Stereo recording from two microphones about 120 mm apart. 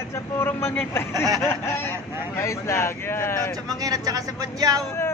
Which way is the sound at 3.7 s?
30° right (ahead or behind).